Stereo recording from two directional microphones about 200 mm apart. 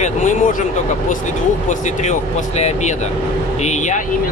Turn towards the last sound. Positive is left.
turn(degrees=35)  # may be behind; listen again after turning